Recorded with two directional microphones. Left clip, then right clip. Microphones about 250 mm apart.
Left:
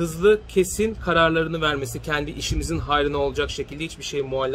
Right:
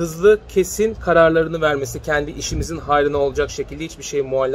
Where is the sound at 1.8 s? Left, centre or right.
Centre.